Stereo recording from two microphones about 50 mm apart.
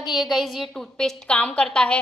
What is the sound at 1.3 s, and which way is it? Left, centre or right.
Speech, left.